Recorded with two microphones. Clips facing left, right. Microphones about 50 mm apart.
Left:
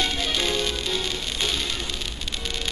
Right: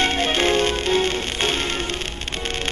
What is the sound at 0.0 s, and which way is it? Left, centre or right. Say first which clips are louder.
Music: right 6 dB; right.